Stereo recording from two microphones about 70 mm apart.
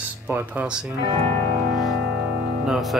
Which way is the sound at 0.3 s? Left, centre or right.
Centre.